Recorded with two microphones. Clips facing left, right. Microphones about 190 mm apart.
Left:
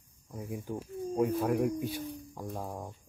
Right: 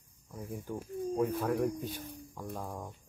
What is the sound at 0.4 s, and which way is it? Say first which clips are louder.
Speech: left 2 dB; 15° left (ahead or behind).